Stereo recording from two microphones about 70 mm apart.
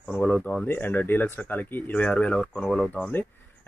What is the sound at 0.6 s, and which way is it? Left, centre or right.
Speech, left.